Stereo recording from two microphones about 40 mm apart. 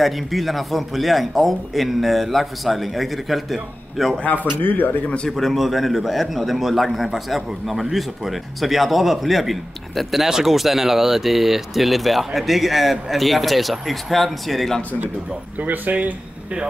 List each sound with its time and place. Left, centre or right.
0.0 s a man's voice: centre
4.6 s speech: left
5.3 s a man's voice: centre
15.6 s speech: right